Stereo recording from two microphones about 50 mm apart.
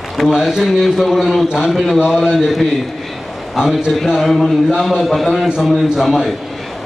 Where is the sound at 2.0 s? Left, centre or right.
Centre.